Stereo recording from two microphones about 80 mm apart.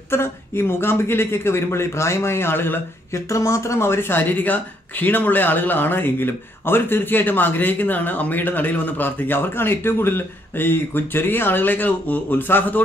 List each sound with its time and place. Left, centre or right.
0.1 s speech: left
3.3 s speech: left